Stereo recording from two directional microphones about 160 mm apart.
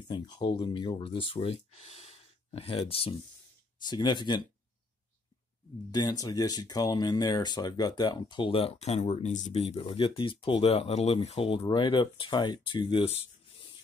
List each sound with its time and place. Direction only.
0.1 s speech: 30° left (ahead or behind)
5.9 s speech: 25° left (ahead or behind)